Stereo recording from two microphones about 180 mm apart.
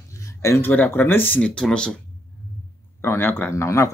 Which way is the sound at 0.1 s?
15° left (ahead or behind).